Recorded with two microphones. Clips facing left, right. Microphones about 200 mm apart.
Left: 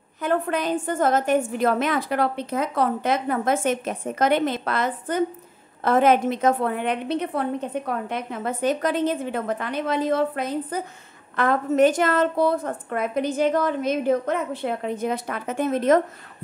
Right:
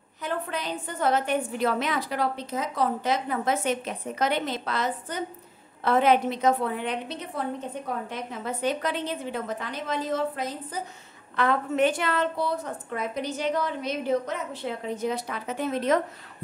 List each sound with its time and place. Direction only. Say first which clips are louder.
0.2 s a woman's voice: left 8 dB; 50° left (ahead or behind)
11.3 s a woman's voice: left 4 dB; 45° left (ahead or behind)